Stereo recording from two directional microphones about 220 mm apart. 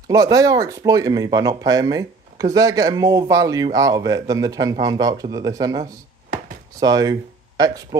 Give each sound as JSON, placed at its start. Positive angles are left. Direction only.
{"t": 0.1, "sound": "speech", "side_deg": -15}